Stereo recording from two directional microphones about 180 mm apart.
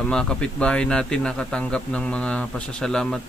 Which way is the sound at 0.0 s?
5° left (ahead or behind).